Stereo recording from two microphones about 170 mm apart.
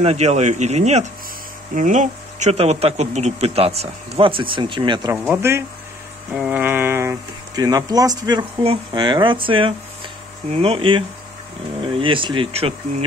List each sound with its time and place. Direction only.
0.0 s speech: 40° right (ahead or behind)
5.1 s speech: 10° right (ahead or behind); by 12.7 s 30° right (ahead or behind)